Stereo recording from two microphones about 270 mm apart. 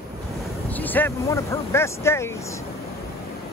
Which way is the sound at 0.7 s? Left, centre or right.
Centre.